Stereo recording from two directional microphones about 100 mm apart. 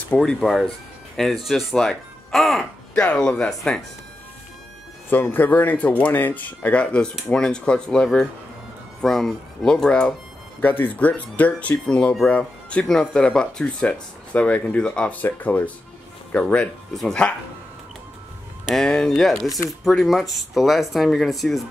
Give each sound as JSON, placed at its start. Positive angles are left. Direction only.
{"t": 0.1, "sound": "speech", "side_deg": 5}
{"t": 5.1, "sound": "speech", "side_deg": 20}
{"t": 10.6, "sound": "speech", "side_deg": 20}
{"t": 18.7, "sound": "speech", "side_deg": 5}